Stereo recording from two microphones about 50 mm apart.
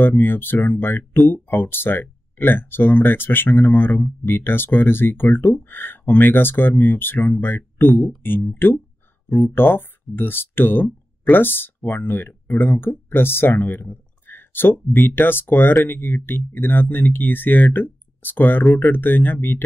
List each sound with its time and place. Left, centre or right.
0.0 s speech: left